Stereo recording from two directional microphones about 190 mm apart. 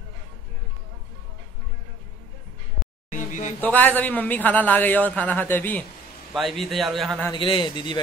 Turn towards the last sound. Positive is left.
turn(degrees=25)  # may be behind; listen again after turning